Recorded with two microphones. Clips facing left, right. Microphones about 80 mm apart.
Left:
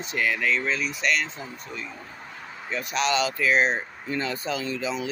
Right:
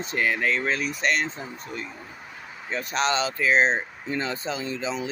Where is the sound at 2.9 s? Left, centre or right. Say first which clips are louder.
Even; right.